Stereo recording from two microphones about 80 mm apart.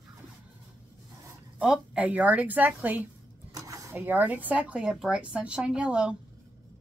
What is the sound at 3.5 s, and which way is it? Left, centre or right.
Mechanisms, right.